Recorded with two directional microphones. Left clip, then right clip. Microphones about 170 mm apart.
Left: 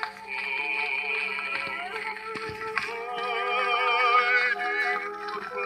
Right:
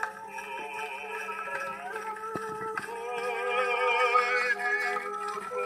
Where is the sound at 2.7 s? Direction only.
35° left (ahead or behind).